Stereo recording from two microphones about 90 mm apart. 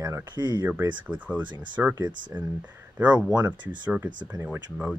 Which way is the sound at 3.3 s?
50° right (ahead or behind).